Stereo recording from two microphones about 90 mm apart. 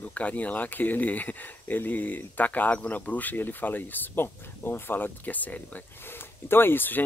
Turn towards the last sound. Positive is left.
turn(degrees=20)  # may be behind; listen again after turning